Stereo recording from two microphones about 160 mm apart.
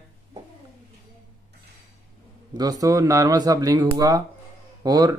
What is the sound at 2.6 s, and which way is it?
Speech, 25° right (ahead or behind).